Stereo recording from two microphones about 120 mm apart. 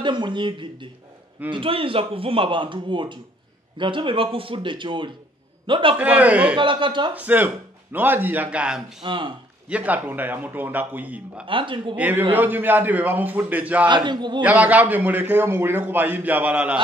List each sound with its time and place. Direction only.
0.0 s speech: 40° right (ahead or behind)
5.9 s a man's voice: 10° right (ahead or behind)
6.5 s speech: 45° right (ahead or behind)
7.2 s a man's voice: 15° right (ahead or behind)
9.0 s speech: 45° right (ahead or behind)
9.7 s a man's voice: 10° right (ahead or behind)
11.4 s speech: 45° right (ahead or behind)
12.0 s a man's voice: 15° right (ahead or behind)
13.8 s speech: 40° right (ahead or behind)
14.4 s a man's voice: 15° right (ahead or behind)